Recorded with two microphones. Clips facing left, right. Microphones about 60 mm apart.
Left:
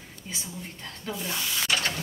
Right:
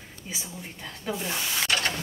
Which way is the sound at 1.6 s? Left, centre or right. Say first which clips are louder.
Even; centre.